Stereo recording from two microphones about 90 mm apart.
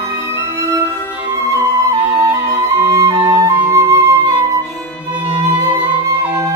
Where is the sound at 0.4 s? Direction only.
25° right (ahead or behind).